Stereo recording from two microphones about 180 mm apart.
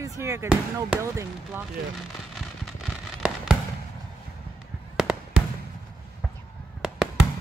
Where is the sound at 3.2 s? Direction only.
5° right (ahead or behind).